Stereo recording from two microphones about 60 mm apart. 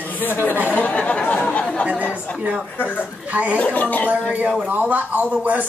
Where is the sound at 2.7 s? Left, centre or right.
Left.